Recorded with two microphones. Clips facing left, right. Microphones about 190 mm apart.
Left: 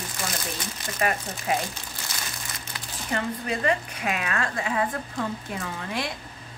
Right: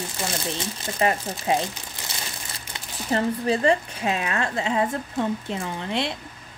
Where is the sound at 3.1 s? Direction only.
30° right (ahead or behind).